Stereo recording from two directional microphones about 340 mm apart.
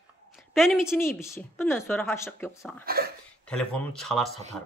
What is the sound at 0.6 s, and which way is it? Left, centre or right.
A woman's voice, centre.